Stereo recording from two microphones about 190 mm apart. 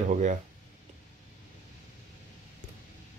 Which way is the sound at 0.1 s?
40° right (ahead or behind).